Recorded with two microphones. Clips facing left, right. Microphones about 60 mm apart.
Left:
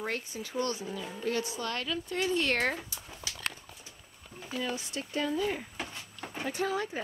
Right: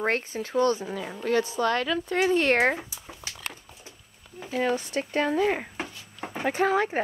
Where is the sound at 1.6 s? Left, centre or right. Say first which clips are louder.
Right 10 dB; right.